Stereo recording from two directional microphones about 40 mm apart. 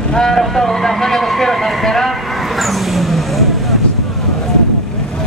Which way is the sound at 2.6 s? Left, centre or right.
Centre.